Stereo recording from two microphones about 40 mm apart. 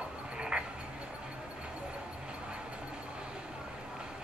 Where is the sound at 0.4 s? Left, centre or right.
Right.